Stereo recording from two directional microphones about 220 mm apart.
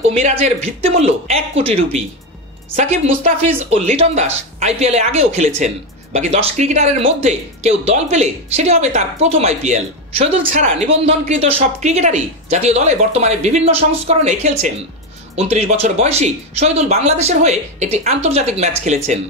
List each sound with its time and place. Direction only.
0.1 s speech: 30° right (ahead or behind)